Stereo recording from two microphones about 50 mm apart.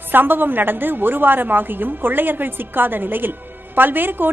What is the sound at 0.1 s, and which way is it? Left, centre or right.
A woman's voice, right.